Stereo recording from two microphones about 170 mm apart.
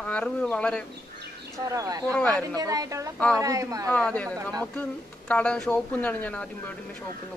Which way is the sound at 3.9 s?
5° left (ahead or behind).